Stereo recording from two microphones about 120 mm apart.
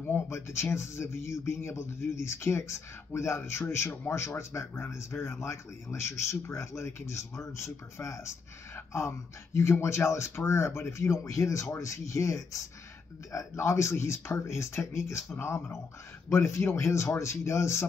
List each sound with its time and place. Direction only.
0.1 s speech: 25° left (ahead or behind)